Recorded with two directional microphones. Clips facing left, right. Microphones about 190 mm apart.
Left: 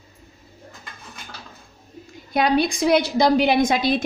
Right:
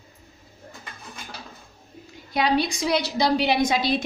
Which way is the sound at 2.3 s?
50° left (ahead or behind).